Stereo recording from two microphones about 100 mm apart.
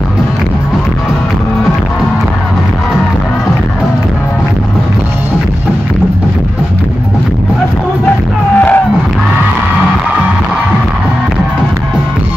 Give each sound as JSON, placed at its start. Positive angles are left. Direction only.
{"t": 8.5, "sound": "music", "side_deg": 15}